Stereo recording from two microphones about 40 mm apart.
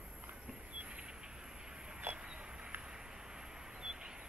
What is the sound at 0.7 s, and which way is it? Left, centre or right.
Vehicle, right.